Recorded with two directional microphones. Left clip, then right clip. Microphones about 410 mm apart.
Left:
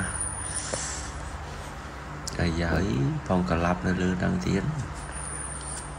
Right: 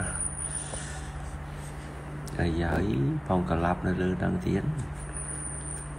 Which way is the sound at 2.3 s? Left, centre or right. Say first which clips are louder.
Left 1 dB; centre.